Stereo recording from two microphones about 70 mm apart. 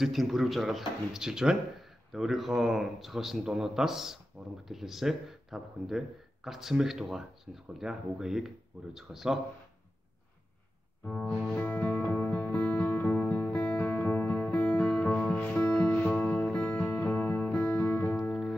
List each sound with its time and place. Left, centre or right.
0.0 s speech: centre
11.1 s music: centre
16.4 s music: centre
16.7 s music: left